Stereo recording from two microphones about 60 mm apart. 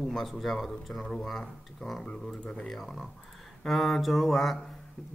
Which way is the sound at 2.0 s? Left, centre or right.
Centre.